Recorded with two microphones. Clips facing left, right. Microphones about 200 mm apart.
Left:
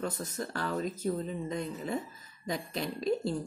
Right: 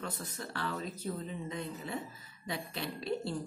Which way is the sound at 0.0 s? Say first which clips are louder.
Left 6 dB; 45° left (ahead or behind).